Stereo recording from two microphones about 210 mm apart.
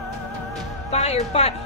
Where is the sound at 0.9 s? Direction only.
30° left (ahead or behind).